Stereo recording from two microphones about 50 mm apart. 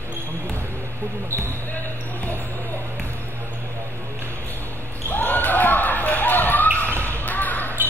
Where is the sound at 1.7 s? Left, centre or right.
Left.